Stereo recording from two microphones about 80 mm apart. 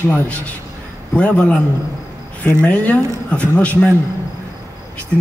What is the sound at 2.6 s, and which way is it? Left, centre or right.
A man's voice, centre.